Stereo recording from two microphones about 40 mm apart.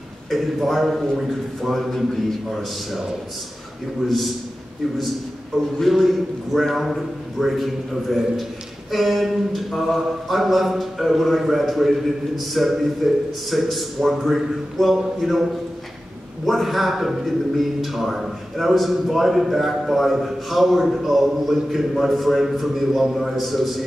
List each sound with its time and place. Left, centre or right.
0.3 s speech: centre
5.8 s speech: centre